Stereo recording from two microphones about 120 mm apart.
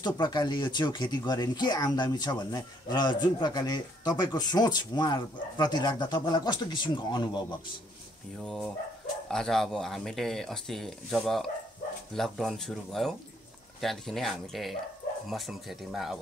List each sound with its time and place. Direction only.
0.0 s speech: 35° left (ahead or behind)
9.3 s speech: 5° left (ahead or behind)